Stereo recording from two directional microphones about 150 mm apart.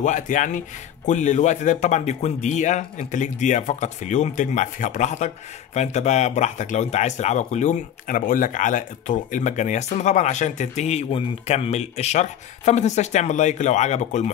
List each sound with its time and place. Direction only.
0.0 s speech: 55° left (ahead or behind)